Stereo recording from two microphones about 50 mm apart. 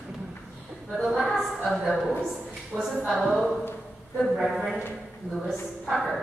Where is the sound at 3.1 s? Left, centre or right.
Centre.